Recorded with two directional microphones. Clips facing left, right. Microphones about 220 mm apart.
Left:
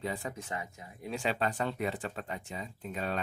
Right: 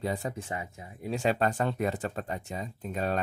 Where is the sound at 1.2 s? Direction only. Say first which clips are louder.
Right 5 dB; 45° right (ahead or behind).